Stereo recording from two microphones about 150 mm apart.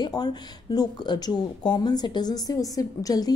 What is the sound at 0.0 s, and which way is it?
A woman's voice, 25° left (ahead or behind).